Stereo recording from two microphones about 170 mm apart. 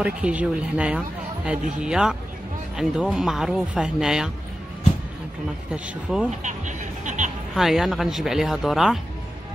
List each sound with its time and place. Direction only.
0.0 s speech: 5° right (ahead or behind)
5.7 s speech: 5° right (ahead or behind)
6.4 s music: 45° right (ahead or behind)
7.5 s speech: centre (ahead or behind)